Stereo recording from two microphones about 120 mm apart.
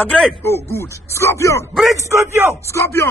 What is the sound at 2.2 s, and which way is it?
Speech, 20° right (ahead or behind).